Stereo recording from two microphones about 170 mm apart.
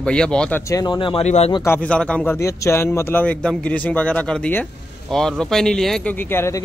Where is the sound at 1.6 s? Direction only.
10° left (ahead or behind).